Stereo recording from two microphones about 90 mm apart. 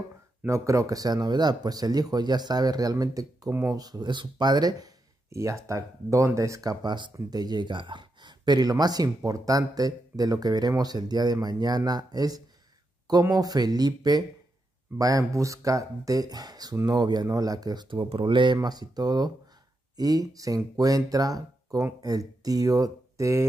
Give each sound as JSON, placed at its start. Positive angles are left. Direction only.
{"t": 0.5, "sound": "speech", "side_deg": -35}
{"t": 17.8, "sound": "speech", "side_deg": -70}